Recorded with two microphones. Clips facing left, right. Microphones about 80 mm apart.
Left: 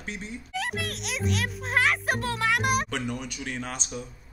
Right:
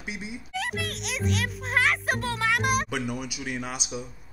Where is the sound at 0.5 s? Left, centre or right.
Centre.